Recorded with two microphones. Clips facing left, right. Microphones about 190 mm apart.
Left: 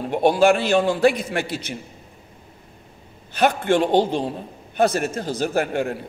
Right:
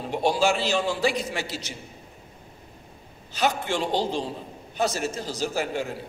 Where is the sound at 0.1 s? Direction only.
55° left (ahead or behind).